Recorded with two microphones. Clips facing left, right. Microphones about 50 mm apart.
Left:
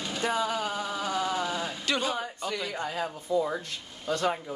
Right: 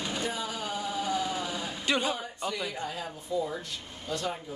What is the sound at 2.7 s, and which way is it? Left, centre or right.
Speech, left.